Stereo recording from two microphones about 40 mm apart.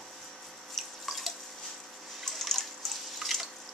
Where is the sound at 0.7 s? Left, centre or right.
Centre.